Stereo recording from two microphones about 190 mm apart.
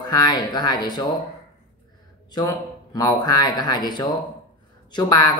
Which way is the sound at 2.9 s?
20° left (ahead or behind).